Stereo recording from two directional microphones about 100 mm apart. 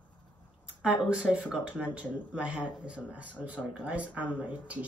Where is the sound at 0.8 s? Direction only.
10° right (ahead or behind).